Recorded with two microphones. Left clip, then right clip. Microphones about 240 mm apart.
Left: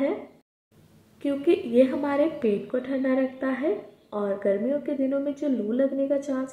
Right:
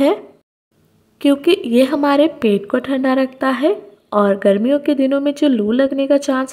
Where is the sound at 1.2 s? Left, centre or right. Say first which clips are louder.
Right 10 dB; right.